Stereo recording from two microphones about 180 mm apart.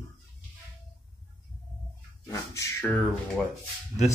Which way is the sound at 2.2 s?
15° left (ahead or behind).